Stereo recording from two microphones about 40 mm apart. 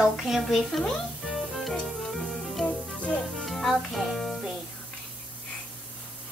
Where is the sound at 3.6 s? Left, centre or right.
Centre.